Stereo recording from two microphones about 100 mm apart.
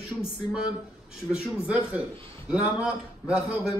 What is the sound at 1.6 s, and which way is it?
A man's voice, 10° right (ahead or behind).